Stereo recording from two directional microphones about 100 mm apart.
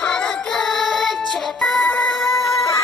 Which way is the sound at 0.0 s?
10° left (ahead or behind).